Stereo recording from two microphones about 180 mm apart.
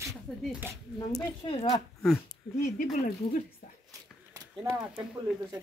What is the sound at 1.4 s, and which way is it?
Speech, 30° left (ahead or behind).